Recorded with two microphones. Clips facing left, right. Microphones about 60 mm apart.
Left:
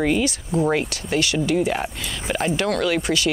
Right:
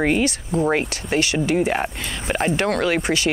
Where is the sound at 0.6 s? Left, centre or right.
Right.